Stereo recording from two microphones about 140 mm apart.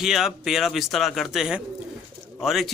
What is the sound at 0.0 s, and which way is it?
A man's voice, centre (ahead or behind).